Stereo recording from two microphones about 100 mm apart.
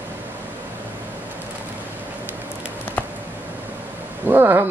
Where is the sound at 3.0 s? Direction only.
15° left (ahead or behind).